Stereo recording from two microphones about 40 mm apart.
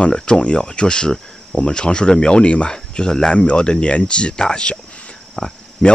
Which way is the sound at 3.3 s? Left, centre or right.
Left.